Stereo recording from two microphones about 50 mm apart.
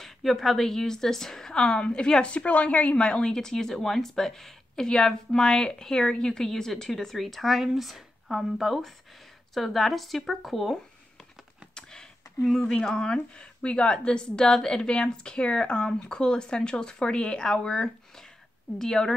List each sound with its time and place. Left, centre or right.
0.0 s a woman's voice: centre
2.3 s a woman's voice: left; by 10.8 s centre
11.7 s a sound: centre
12.4 s a woman's voice: centre